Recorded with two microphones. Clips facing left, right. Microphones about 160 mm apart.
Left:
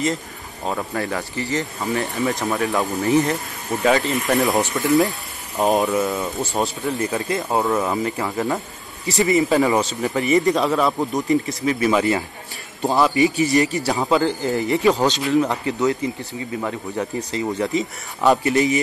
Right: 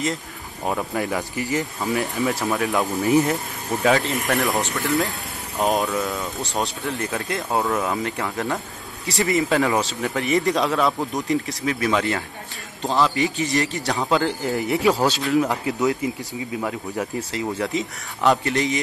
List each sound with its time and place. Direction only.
0.7 s speech: 10° right (ahead or behind)
4.7 s speech: 20° left (ahead or behind)
5.6 s speech: centre (ahead or behind)